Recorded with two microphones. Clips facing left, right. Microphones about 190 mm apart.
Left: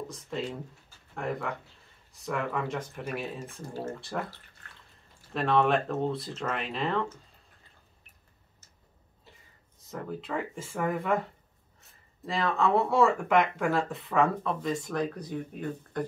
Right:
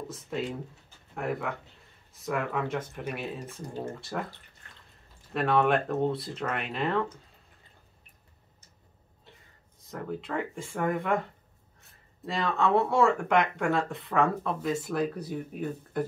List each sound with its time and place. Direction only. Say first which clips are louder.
1.1 s speech: right 1 dB; 5° right (ahead or behind)
3.6 s speech: even; 15° right (ahead or behind)
3.9 s speech: even; centre (ahead or behind)
5.3 s speech: even; 5° right (ahead or behind)
9.8 s speech: right 1 dB; centre (ahead or behind)